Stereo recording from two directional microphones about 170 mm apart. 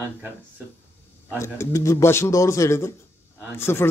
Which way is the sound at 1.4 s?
15° left (ahead or behind).